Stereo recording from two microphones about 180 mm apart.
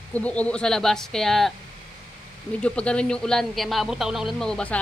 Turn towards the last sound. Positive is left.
turn(degrees=5)  # may be behind; listen again after turning